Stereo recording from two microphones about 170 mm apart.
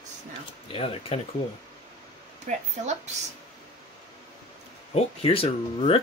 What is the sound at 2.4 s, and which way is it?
Speech, 45° right (ahead or behind).